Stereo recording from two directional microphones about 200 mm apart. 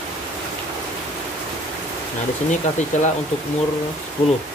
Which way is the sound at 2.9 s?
35° left (ahead or behind).